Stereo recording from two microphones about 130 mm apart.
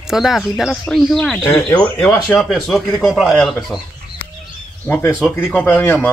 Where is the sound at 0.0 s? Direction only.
5° right (ahead or behind).